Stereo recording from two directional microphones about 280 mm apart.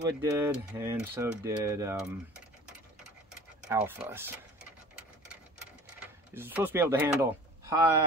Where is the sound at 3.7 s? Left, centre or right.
Centre.